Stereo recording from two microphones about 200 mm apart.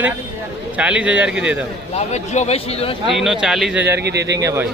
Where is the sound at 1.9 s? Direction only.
35° left (ahead or behind).